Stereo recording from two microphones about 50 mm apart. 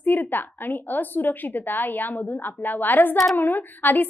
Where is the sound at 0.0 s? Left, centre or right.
Left.